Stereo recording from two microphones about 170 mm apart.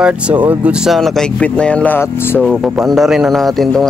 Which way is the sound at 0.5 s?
5° right (ahead or behind).